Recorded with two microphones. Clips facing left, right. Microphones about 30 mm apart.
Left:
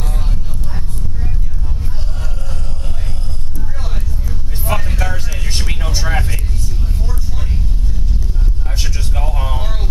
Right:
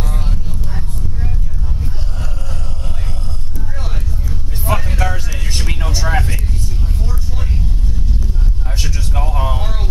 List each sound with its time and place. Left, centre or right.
0.0 s vehicle: centre
4.3 s vehicle: centre
8.7 s a sound: centre